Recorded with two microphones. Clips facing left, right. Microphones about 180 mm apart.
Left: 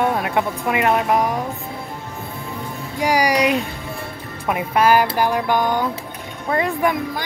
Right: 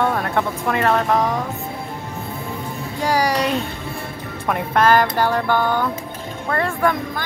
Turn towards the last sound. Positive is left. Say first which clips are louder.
# even
turn(degrees=15)  # may be behind; listen again after turning